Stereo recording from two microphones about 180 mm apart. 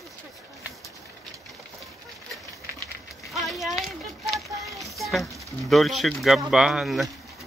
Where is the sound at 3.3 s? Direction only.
Centre (ahead or behind).